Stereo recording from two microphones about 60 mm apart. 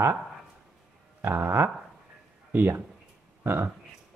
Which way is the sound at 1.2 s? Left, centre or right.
Right.